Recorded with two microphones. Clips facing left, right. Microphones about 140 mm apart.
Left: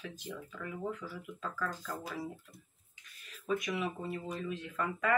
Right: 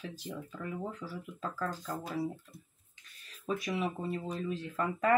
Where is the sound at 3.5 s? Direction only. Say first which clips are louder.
Right 1 dB; 30° right (ahead or behind).